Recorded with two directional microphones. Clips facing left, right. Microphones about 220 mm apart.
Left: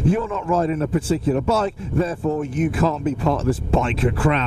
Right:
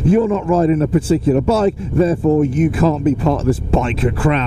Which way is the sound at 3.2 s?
25° right (ahead or behind).